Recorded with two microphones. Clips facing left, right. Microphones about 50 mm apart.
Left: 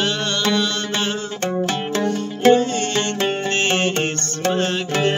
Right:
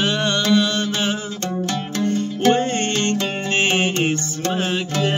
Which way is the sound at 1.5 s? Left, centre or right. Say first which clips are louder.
Left 2 dB; left.